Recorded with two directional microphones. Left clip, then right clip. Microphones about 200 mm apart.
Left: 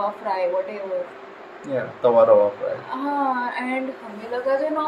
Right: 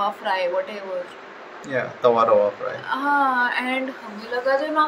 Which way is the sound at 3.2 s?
10° left (ahead or behind).